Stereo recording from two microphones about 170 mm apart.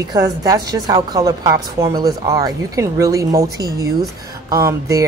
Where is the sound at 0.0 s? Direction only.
20° right (ahead or behind).